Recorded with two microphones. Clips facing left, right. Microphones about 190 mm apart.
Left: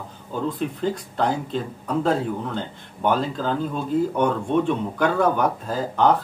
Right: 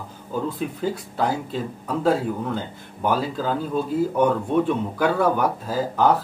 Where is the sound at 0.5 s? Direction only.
5° right (ahead or behind).